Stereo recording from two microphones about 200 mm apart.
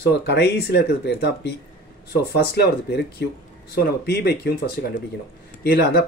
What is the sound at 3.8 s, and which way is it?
Speech, 50° left (ahead or behind).